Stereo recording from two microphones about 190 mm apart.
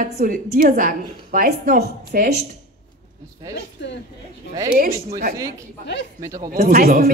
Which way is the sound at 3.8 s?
65° left (ahead or behind).